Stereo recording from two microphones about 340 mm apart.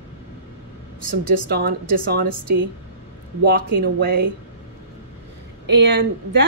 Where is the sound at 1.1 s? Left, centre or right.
Right.